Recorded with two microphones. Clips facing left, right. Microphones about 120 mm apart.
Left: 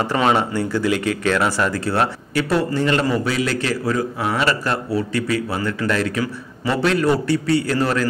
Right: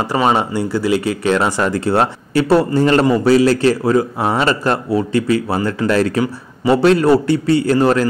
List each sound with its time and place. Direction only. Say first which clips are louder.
0.0 s speech: right 2 dB; 15° right (ahead or behind)
1.3 s a man's voice: right 5 dB; 25° right (ahead or behind)